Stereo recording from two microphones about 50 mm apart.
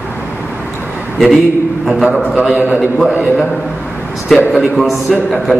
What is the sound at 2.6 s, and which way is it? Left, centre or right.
Speech, right.